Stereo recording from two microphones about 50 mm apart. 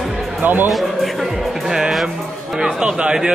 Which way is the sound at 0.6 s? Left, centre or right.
Centre.